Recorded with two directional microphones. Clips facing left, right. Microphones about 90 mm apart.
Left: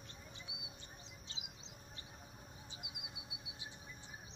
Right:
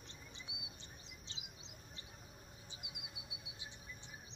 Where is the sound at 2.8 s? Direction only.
25° right (ahead or behind).